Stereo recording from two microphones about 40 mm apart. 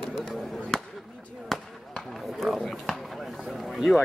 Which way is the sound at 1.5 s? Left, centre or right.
Centre.